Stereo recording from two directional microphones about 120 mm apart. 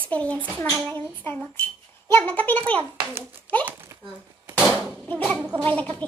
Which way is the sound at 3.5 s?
15° right (ahead or behind).